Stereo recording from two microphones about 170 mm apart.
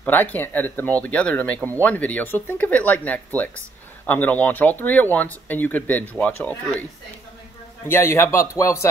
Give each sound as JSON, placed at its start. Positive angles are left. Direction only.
{"t": 0.0, "sound": "speech", "side_deg": 10}
{"t": 7.8, "sound": "speech", "side_deg": 15}